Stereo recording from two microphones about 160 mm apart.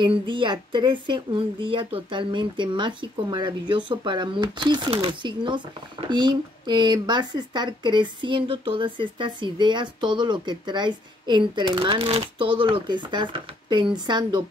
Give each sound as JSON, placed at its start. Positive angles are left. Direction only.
{"t": 0.0, "sound": "speech", "side_deg": -30}